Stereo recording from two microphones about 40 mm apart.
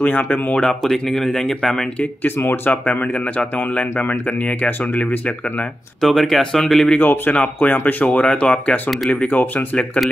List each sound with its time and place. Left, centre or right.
0.0 s speech: left
0.7 s speech: centre
2.2 s speech: left
2.7 s speech: left
5.9 s speech: centre
7.0 s speech: left
7.7 s speech: left
8.2 s speech: left
9.1 s speech: left